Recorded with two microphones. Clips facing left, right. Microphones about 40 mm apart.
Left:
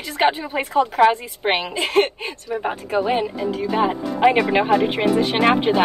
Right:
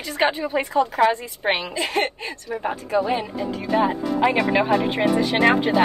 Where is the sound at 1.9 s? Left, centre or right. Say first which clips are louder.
Left 7 dB; left.